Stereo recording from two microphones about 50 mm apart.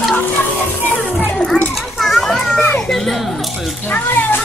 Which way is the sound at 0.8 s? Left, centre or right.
Left.